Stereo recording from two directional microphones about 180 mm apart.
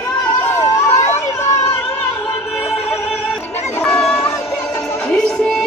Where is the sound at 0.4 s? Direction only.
10° left (ahead or behind).